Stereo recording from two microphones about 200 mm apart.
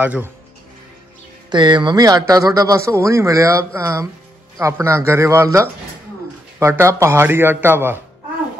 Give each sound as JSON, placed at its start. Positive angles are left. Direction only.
{"t": 0.0, "sound": "a man's voice", "side_deg": -10}
{"t": 1.5, "sound": "a man's voice", "side_deg": -20}
{"t": 6.6, "sound": "a man's voice", "side_deg": -15}